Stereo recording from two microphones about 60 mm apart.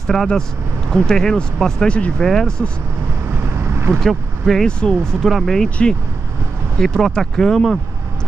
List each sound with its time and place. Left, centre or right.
0.0 s speech: centre
3.4 s vehicle: right
3.9 s speech: centre
4.6 s speech: centre
5.2 s speech: centre
6.8 s speech: centre